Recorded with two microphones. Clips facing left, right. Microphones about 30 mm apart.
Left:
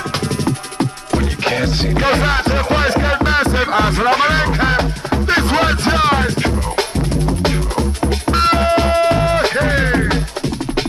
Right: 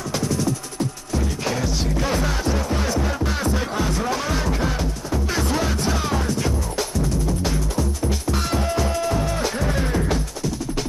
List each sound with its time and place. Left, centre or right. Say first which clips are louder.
0.3 s music: left 4 dB; left